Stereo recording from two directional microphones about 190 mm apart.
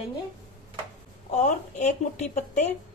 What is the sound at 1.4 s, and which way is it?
Speech, 40° left (ahead or behind).